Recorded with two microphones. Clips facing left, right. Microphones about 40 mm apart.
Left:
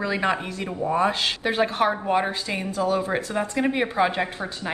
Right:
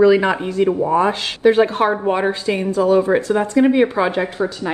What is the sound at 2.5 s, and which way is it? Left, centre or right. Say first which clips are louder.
A woman's voice: right 8 dB; right.